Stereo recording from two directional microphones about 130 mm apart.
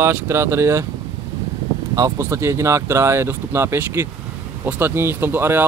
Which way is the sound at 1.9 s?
25° right (ahead or behind).